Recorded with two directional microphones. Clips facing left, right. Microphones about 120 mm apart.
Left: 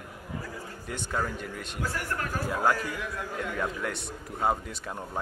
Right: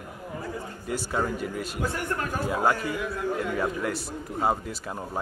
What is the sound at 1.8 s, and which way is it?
Speech, 20° right (ahead or behind).